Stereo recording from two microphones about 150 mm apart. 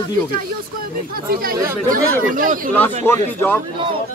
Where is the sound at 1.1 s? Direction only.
75° right (ahead or behind).